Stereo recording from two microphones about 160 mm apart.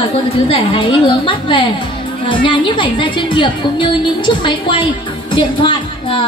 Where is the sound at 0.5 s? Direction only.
35° left (ahead or behind).